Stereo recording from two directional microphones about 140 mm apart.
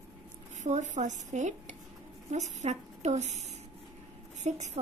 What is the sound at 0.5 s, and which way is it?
Speech, 60° right (ahead or behind).